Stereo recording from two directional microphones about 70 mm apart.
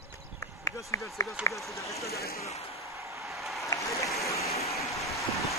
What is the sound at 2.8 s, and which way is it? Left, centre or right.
Vehicle, right.